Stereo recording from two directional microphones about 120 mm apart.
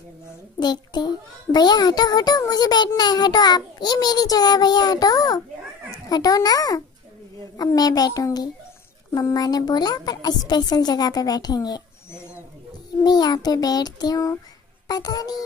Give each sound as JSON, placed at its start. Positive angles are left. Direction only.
{"t": 0.6, "sound": "a child's voice", "side_deg": 35}
{"t": 12.1, "sound": "bird", "side_deg": 20}
{"t": 13.0, "sound": "a woman's voice", "side_deg": 35}